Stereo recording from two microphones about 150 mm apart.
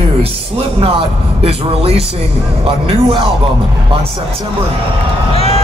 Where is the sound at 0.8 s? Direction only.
40° right (ahead or behind).